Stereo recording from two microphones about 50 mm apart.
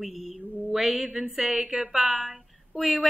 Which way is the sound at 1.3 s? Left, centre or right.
Centre.